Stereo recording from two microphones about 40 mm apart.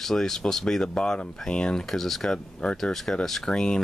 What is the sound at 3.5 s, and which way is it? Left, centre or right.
Speech, centre.